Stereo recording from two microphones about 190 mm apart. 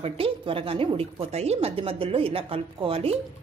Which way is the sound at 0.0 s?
30° right (ahead or behind).